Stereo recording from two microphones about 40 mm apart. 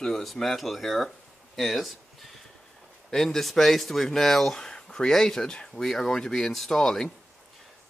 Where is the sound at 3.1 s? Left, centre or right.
Centre.